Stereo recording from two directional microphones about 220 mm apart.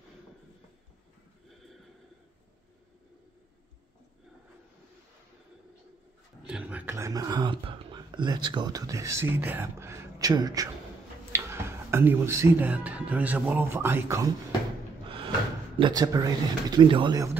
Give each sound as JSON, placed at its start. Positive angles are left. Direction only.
{"t": 6.4, "sound": "speech", "side_deg": -5}
{"t": 15.8, "sound": "speech", "side_deg": -15}